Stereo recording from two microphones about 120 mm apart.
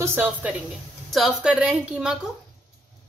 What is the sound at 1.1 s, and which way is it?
A woman's voice, centre (ahead or behind).